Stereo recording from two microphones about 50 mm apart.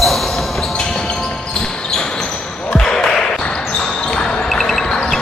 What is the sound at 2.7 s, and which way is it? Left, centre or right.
Basketball bounce, centre.